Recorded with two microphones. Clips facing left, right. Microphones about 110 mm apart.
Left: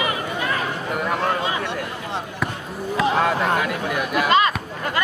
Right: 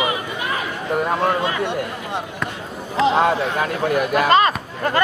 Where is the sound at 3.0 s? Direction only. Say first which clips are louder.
Right 4 dB; 25° right (ahead or behind).